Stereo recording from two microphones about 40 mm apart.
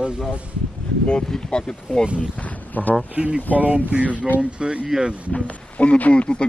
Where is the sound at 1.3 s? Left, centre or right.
Centre.